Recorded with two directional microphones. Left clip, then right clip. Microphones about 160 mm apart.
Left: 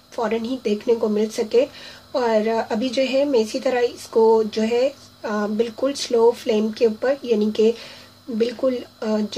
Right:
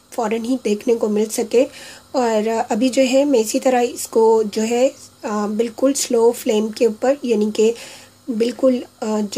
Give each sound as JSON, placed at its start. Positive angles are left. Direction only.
{"t": 0.1, "sound": "speech", "side_deg": -40}